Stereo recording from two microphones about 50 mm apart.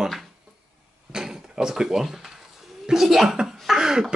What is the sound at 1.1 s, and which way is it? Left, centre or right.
Drawer open or close, centre.